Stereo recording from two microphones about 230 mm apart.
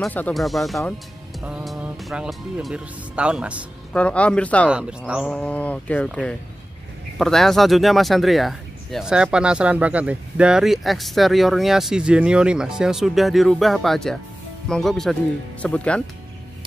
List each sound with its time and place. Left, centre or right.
0.0 s speech: centre
3.9 s speech: centre
4.6 s speech: centre